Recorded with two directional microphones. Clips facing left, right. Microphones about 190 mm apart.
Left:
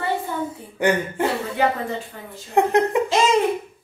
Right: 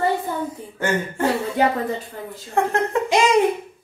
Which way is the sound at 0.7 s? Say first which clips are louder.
Left 3 dB; 15° left (ahead or behind).